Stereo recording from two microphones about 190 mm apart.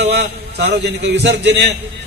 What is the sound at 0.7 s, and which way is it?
A man's voice, 65° right (ahead or behind).